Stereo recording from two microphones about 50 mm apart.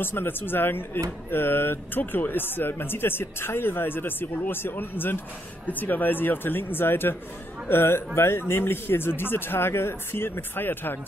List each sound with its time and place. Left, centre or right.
0.0 s speech: left